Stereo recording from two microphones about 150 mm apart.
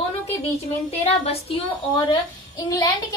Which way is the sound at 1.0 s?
45° left (ahead or behind).